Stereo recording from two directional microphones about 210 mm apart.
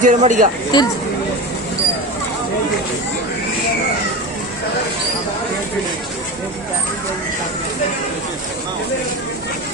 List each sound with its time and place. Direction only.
0.0 s speech: 35° right (ahead or behind)
0.7 s speech: 20° left (ahead or behind)